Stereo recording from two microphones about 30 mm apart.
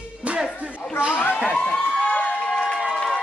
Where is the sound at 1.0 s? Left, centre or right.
Right.